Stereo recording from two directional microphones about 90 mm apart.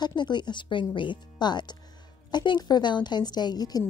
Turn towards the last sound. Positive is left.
turn(degrees=50)  # may be behind; listen again after turning